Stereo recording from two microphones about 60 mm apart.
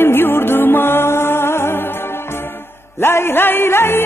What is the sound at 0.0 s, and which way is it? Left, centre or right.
Music, left.